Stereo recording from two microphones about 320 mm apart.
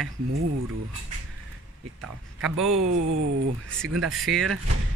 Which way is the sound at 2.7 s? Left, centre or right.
Right.